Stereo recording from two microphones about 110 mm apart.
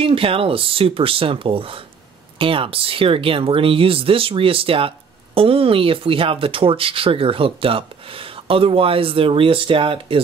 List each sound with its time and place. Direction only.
0.0 s speech: 55° right (ahead or behind)